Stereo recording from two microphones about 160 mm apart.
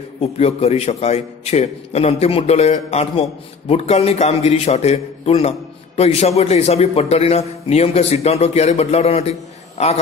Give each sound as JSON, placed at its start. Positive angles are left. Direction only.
{"t": 0.2, "sound": "a man's voice", "side_deg": 40}